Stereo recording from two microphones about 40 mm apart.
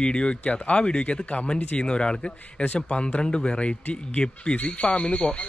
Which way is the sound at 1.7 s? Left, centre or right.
Left.